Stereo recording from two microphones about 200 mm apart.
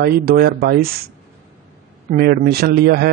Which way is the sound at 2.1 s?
45° right (ahead or behind).